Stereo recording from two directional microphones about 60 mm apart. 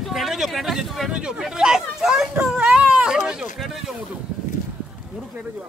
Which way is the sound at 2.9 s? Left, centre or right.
Centre.